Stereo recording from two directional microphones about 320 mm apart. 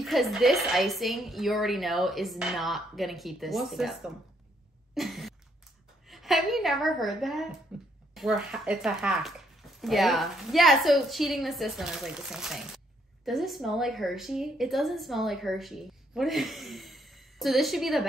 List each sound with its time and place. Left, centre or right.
0.0 s speech: centre
4.9 s a sound: centre
6.0 s a woman's voice: centre